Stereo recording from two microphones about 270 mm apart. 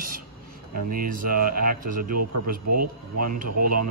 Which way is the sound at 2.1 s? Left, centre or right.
Right.